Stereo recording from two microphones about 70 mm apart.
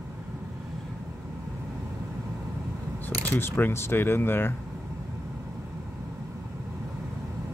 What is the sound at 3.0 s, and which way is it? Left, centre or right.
Speech, left.